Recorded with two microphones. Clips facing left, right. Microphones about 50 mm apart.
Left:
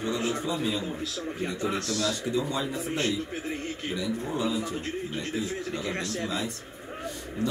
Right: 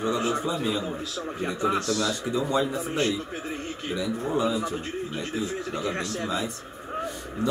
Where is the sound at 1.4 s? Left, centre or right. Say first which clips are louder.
Right 5 dB; right.